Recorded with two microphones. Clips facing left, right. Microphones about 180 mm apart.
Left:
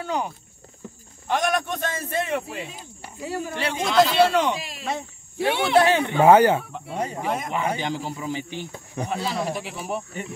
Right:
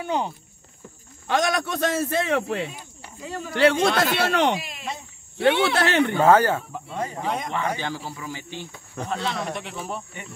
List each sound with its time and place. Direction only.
0.0 s speech: 25° right (ahead or behind)
1.2 s a man's voice: 90° right
3.2 s a man's voice: 10° left (ahead or behind)
3.5 s speech: 85° right
6.2 s a man's voice: 15° left (ahead or behind)